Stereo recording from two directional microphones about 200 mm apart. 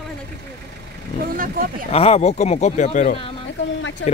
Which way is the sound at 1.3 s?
45° right (ahead or behind).